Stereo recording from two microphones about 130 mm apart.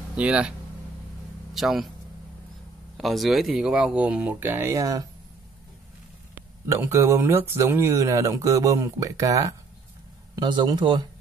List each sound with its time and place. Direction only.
0.1 s a man's voice: 10° right (ahead or behind)
3.0 s speech: centre (ahead or behind); by 5.0 s 25° right (ahead or behind)
6.7 s speech: 20° right (ahead or behind)